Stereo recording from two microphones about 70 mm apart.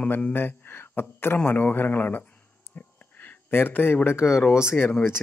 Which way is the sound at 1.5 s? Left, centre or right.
Left.